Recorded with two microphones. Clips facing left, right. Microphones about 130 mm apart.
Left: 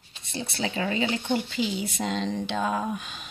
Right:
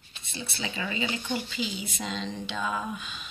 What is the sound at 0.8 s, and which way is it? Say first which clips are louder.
Speech: left 6 dB; 45° left (ahead or behind).